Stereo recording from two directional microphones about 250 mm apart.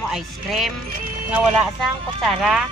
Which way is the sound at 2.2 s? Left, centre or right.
Centre.